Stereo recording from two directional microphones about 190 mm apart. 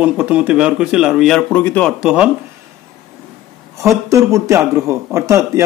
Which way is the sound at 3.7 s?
15° right (ahead or behind).